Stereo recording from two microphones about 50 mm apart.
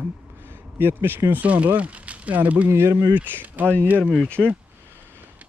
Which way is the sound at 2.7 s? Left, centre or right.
Right.